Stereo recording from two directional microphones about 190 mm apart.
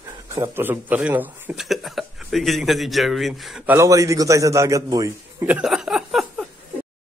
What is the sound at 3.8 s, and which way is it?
A man's voice, 15° right (ahead or behind).